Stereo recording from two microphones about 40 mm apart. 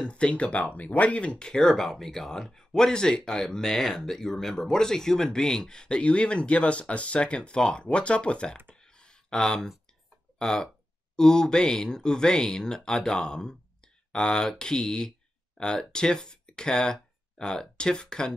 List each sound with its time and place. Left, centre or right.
0.0 s speech: left